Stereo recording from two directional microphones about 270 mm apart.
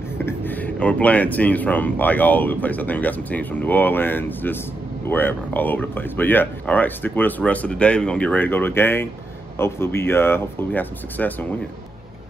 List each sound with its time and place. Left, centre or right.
0.2 s speech: centre